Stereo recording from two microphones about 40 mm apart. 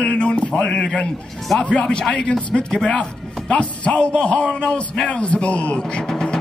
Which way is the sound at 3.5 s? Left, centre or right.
Left.